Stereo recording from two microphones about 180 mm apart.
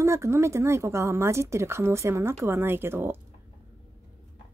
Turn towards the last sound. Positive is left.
turn(degrees=-15)  # may be behind; listen again after turning